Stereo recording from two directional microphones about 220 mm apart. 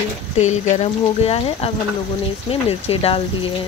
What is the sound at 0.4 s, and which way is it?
Speech, 30° left (ahead or behind).